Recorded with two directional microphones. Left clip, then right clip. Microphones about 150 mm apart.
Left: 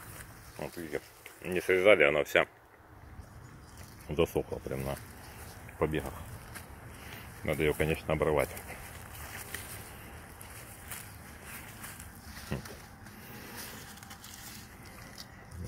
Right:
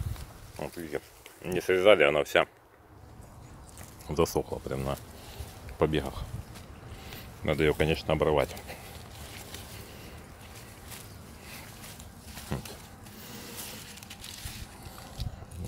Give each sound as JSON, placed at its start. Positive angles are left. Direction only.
{"t": 0.6, "sound": "speech", "side_deg": -20}
{"t": 4.1, "sound": "speech", "side_deg": -5}
{"t": 4.5, "sound": "speech", "side_deg": -20}
{"t": 5.8, "sound": "speech", "side_deg": -40}
{"t": 7.4, "sound": "speech", "side_deg": -30}
{"t": 12.5, "sound": "speech", "side_deg": -15}